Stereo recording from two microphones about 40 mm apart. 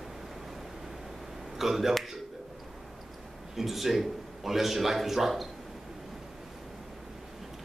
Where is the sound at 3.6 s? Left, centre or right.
Centre.